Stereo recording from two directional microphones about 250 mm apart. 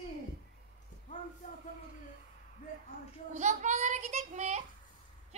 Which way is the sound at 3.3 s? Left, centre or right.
Right.